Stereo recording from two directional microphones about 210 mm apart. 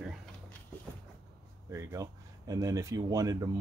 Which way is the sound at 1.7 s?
15° right (ahead or behind).